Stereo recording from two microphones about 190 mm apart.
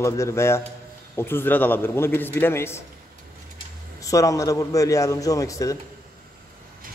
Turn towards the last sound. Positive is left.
turn(degrees=15)  # may be behind; listen again after turning